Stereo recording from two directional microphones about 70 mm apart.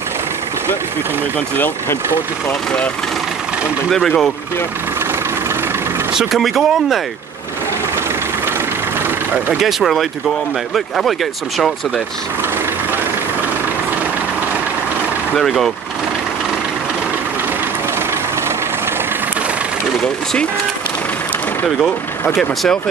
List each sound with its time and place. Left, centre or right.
6.1 s speech: centre
9.6 s speech: centre
15.3 s speech: centre
22.4 s speech: centre